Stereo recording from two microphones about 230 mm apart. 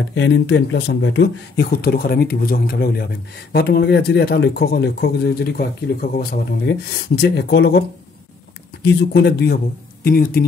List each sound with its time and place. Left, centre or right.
0.1 s speech: left
8.8 s speech: left